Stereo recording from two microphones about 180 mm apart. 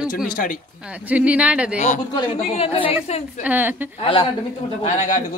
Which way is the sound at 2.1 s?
30° left (ahead or behind).